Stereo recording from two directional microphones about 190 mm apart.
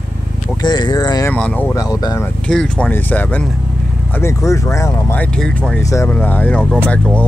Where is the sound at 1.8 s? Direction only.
20° left (ahead or behind).